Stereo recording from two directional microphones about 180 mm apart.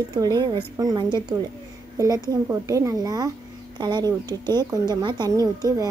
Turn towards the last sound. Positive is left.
turn(degrees=-20)  # may be behind; listen again after turning